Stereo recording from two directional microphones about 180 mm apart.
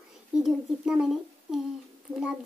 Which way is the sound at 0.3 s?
5° right (ahead or behind).